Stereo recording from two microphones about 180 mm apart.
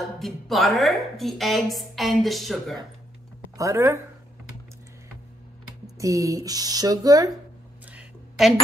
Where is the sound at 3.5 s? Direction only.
15° right (ahead or behind).